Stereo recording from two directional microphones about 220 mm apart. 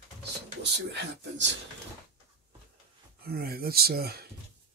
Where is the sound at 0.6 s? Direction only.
50° right (ahead or behind).